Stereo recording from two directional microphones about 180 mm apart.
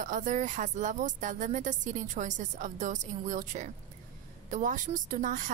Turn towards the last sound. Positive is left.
turn(degrees=-45)  # may be behind; listen again after turning